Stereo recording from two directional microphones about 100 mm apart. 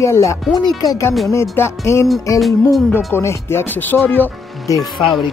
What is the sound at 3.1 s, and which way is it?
Speech, 25° left (ahead or behind).